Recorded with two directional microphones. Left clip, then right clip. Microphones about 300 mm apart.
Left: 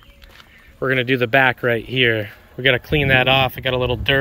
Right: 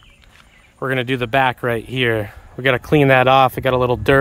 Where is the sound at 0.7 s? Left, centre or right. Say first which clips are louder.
Left 2 dB; centre.